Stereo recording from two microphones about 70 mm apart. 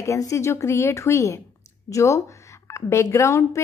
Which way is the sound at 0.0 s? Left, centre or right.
Left.